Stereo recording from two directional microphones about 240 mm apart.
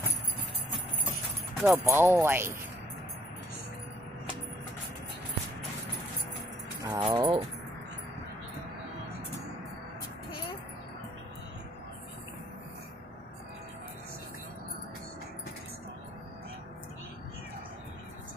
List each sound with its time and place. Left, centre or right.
1.6 s speech: centre
6.8 s speech: centre